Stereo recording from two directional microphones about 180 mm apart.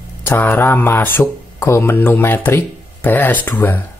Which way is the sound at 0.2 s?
10° left (ahead or behind).